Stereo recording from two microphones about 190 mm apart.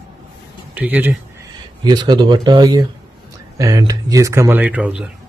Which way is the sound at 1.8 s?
25° right (ahead or behind).